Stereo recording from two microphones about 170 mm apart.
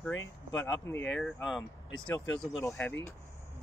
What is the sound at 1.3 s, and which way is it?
Speech, centre (ahead or behind).